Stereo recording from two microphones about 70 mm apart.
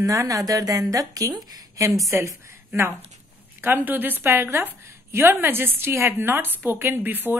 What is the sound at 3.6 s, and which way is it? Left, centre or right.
A woman's voice, right.